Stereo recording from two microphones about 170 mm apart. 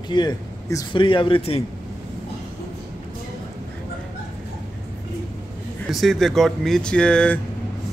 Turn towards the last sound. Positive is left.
turn(degrees=5)  # may be behind; listen again after turning